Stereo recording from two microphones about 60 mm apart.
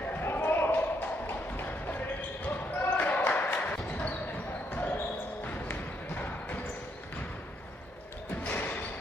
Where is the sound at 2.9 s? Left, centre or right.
Left.